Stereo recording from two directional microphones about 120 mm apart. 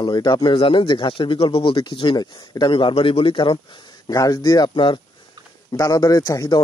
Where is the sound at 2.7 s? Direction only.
50° left (ahead or behind).